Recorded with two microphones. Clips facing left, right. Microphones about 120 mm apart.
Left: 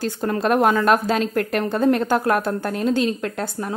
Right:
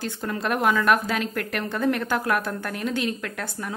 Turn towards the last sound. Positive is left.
turn(degrees=30)  # may be behind; listen again after turning